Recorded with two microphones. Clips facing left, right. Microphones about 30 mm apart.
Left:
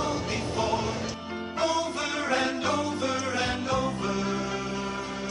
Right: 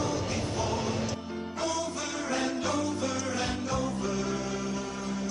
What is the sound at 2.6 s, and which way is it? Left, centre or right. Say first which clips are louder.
Music: left 2 dB; left.